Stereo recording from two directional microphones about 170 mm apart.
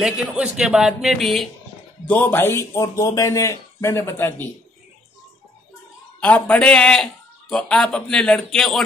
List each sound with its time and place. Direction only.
0.0 s a man's voice: 5° right (ahead or behind); by 4.5 s 15° left (ahead or behind)
6.2 s a man's voice: 5° left (ahead or behind)